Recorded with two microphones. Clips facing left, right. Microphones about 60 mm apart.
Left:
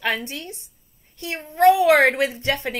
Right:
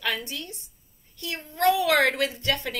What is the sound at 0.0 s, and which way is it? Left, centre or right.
A woman's voice, left.